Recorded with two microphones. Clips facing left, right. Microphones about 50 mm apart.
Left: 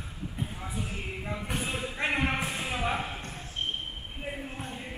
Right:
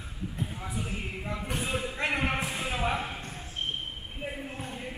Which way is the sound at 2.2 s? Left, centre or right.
Centre.